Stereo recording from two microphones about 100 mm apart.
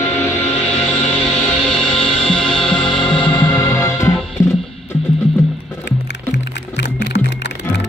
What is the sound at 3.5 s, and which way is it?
Music, 25° left (ahead or behind).